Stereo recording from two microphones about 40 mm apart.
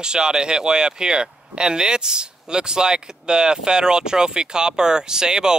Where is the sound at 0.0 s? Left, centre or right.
Centre.